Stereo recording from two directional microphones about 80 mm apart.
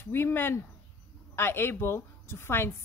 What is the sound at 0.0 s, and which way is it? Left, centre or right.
A woman's voice, left.